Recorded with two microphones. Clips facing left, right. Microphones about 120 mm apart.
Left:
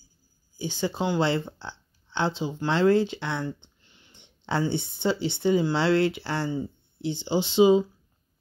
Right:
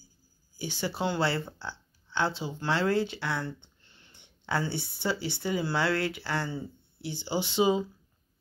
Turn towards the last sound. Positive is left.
turn(degrees=20)  # may be behind; listen again after turning